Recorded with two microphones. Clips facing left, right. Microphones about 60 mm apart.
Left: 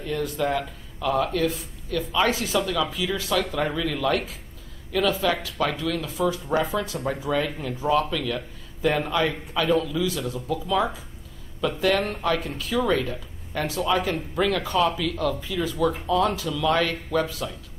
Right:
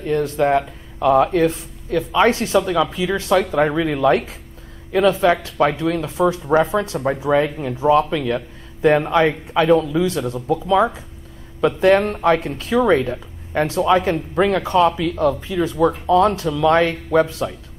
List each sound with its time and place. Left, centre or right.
0.4 s speech: right